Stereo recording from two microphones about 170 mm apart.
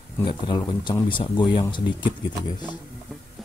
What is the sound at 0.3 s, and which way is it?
Speech, 30° left (ahead or behind).